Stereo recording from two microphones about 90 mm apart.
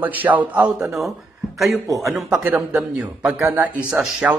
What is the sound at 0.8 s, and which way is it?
Speech, centre (ahead or behind).